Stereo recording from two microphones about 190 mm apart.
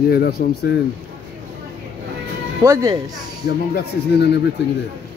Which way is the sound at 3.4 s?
60° left (ahead or behind).